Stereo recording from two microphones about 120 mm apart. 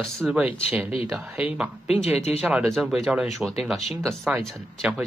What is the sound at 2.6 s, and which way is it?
Speech, centre (ahead or behind).